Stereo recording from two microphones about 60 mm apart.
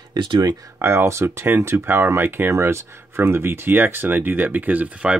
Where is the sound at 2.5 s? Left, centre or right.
Right.